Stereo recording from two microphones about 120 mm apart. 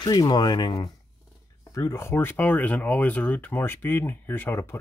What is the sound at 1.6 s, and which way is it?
Speech, 25° left (ahead or behind).